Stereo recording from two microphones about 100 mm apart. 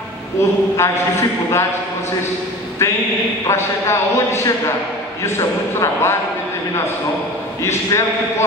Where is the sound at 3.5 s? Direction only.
30° left (ahead or behind).